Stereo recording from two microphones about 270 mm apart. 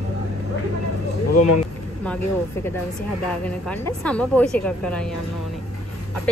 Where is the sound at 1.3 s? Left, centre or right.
Left.